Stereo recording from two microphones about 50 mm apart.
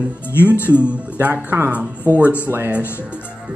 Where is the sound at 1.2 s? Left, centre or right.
Right.